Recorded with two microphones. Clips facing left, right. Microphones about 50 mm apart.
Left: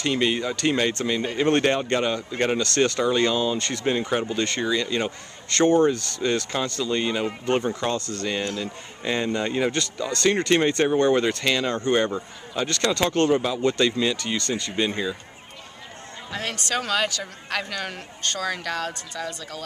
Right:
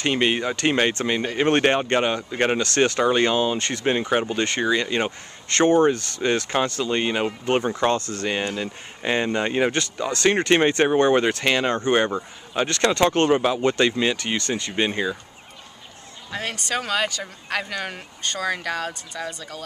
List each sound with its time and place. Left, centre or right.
0.0 s speech: right
7.2 s speech: centre
7.7 s speech: right
8.1 s speech: right
16.3 s speech: centre